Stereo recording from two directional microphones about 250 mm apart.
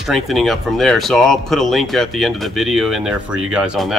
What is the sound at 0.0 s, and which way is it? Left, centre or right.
Speech, centre.